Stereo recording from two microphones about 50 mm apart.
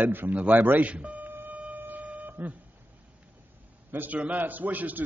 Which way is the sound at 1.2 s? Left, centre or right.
Right.